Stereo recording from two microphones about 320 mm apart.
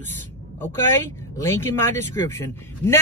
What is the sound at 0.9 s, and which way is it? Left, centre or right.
Speech, centre.